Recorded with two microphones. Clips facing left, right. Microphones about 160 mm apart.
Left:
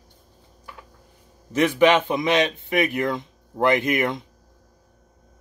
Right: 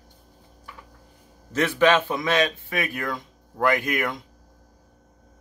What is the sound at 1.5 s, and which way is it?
Speech, 15° left (ahead or behind).